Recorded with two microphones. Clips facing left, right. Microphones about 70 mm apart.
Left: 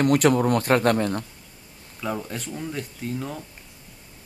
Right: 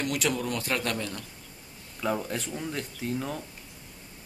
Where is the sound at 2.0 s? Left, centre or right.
Centre.